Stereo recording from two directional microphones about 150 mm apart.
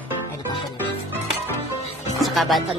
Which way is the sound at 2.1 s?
Centre (ahead or behind).